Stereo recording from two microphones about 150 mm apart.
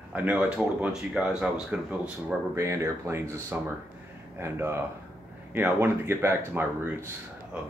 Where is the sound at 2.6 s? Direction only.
20° right (ahead or behind).